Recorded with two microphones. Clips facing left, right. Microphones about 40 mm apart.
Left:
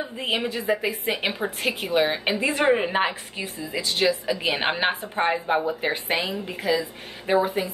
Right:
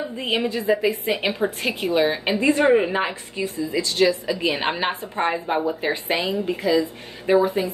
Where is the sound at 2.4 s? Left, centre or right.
Left.